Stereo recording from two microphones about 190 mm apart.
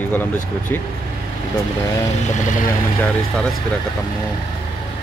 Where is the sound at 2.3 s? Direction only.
40° left (ahead or behind).